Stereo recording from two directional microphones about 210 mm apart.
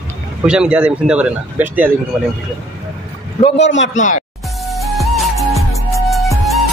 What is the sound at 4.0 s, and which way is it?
Speech, 35° left (ahead or behind).